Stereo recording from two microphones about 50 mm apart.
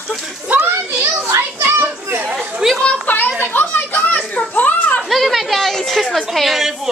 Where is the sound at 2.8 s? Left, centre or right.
Left.